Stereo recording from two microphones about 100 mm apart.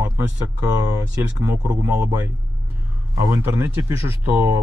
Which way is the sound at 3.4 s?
25° right (ahead or behind).